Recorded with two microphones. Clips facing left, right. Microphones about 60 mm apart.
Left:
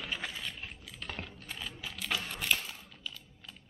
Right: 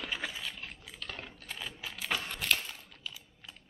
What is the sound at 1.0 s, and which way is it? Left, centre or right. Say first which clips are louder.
Typing: left 1 dB; left.